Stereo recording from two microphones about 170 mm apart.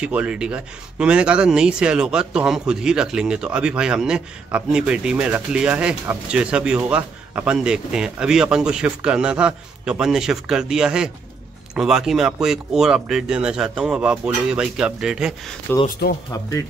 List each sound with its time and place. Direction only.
0.0 s speech: 5° right (ahead or behind)
16.3 s speech: 20° left (ahead or behind)